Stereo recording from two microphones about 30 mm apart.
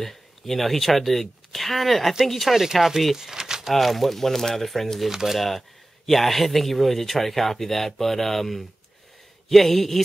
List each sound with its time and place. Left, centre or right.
0.0 s speech: centre
3.2 s a sound: centre
3.7 s speech: centre
5.0 s speech: centre
6.0 s speech: centre